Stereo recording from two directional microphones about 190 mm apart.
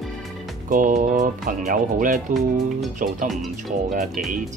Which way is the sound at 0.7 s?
45° right (ahead or behind).